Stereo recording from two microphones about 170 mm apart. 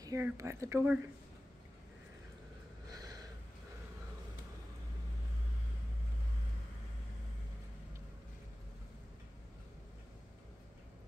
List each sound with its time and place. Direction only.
0.0 s speech: 20° right (ahead or behind)
2.9 s snort: 20° right (ahead or behind)